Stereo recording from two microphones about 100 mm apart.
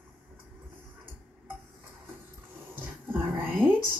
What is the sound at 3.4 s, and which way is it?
Whispering, 20° right (ahead or behind).